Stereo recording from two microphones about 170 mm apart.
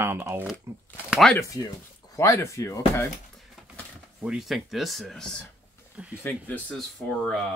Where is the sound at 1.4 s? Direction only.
20° left (ahead or behind).